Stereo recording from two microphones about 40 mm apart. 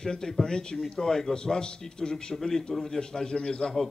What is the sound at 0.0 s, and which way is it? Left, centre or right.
A man's voice, centre.